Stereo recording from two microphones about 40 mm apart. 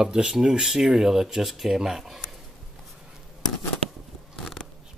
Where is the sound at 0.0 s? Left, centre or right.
Centre.